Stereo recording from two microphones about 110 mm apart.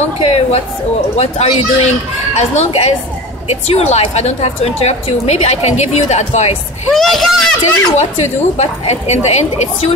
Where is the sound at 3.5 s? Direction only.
65° left (ahead or behind); by 6.5 s 85° left.